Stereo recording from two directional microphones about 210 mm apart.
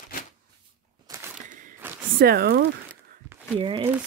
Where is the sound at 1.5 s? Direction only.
40° right (ahead or behind).